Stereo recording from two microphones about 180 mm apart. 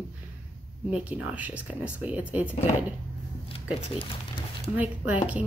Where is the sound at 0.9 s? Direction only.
5° right (ahead or behind).